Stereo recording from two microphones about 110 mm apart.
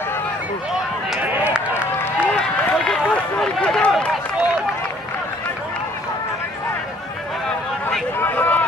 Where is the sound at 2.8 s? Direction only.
5° left (ahead or behind).